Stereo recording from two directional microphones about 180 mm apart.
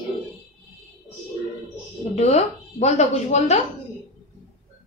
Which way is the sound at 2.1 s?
40° left (ahead or behind).